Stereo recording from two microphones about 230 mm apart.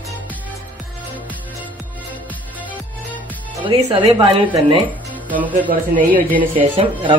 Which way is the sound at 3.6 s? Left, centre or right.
Right.